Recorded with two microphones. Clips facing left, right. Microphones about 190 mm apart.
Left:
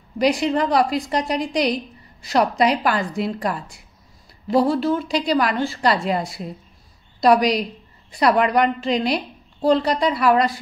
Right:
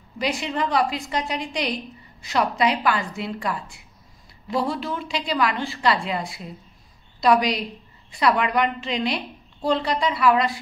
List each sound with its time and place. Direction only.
0.2 s a woman's voice: 40° left (ahead or behind)